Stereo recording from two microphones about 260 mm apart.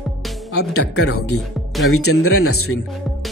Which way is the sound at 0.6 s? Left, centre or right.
Left.